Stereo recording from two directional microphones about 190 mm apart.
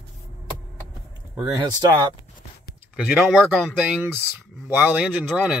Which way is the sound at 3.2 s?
Centre (ahead or behind).